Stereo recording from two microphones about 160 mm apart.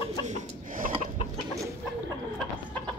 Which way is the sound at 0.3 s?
60° right (ahead or behind).